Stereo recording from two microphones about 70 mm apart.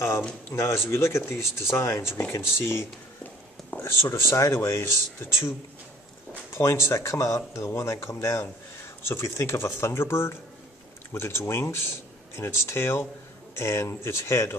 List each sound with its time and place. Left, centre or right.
0.5 s speech: left
6.5 s speech: left